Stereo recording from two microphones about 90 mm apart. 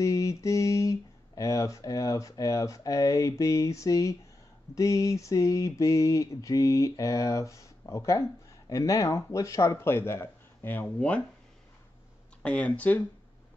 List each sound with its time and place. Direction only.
0.0 s mantra: 35° left (ahead or behind); by 11.2 s 15° left (ahead or behind)
12.4 s speech: 15° left (ahead or behind)